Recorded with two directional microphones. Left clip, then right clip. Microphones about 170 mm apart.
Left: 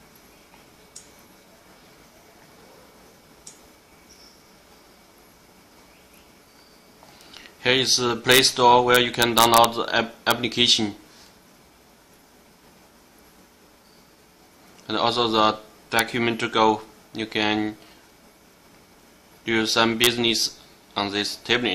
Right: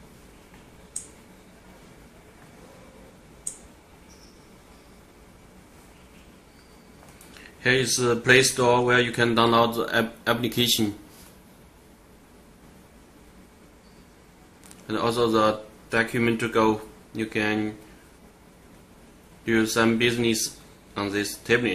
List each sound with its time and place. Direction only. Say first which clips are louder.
7.6 s a man's voice: left 2 dB; 50° left (ahead or behind)
14.9 s speech: left 2 dB; 50° left (ahead or behind)
19.4 s a man's voice: left 2 dB; 50° left (ahead or behind)